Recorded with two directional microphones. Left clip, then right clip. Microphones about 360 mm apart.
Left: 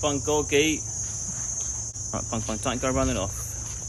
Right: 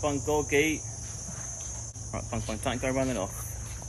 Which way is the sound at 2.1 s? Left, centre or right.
Left.